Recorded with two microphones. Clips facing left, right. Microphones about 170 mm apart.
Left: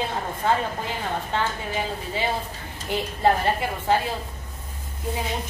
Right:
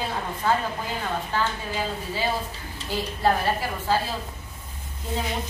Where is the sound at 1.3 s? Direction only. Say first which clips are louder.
Left 1 dB; 20° left (ahead or behind).